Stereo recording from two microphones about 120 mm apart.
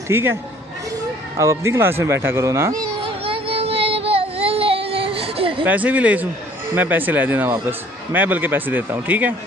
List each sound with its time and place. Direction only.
0.1 s speech: 20° right (ahead or behind)
1.4 s speech: 25° right (ahead or behind)
3.0 s a sound: 50° right (ahead or behind)
5.7 s speech: 15° right (ahead or behind)